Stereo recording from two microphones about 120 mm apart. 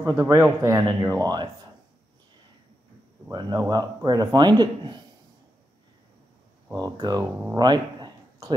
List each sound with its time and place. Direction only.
0.0 s a man's voice: 25° right (ahead or behind)
1.2 s speech: 35° right (ahead or behind)
3.3 s speech: 35° right (ahead or behind)
6.7 s speech: 30° right (ahead or behind)
7.5 s a sound: 35° right (ahead or behind)